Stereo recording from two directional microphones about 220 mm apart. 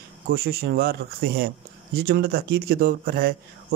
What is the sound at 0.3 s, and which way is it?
A man's voice, 45° right (ahead or behind).